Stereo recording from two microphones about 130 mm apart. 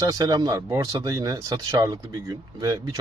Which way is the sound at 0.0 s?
25° right (ahead or behind).